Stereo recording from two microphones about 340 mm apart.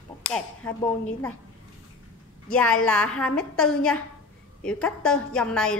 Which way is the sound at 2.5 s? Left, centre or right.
Centre.